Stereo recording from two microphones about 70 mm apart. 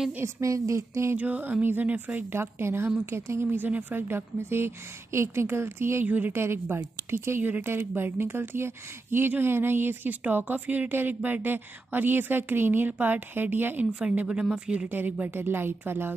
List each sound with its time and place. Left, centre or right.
0.4 s a woman's voice: right
1.1 s a woman's voice: right
3.5 s speech: right
6.0 s a woman's voice: right
6.3 s a woman's voice: right
13.9 s speech: centre
14.9 s speech: right